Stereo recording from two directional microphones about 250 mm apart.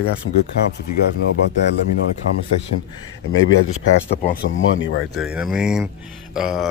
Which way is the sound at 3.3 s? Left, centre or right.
Left.